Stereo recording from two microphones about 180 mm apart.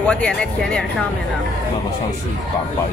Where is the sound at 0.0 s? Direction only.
5° left (ahead or behind).